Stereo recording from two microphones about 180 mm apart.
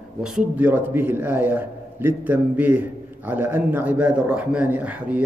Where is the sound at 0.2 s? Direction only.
5° right (ahead or behind).